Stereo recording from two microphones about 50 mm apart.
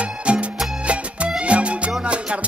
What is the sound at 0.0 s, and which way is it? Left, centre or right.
Music, right.